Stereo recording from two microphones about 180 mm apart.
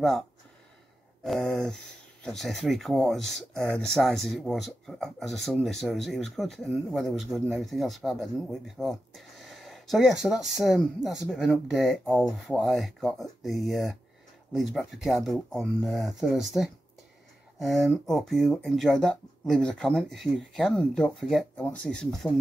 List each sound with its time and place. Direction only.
0.0 s speech: centre (ahead or behind)